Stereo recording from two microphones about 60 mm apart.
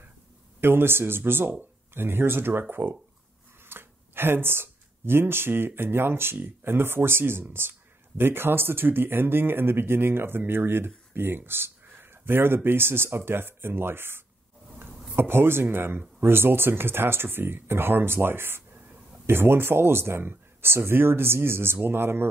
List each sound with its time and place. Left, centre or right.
0.6 s speech: right
3.6 s a sound: right
5.8 s speech: right